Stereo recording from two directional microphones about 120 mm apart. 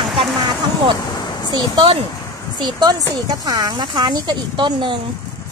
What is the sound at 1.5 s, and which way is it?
Speech, 40° right (ahead or behind).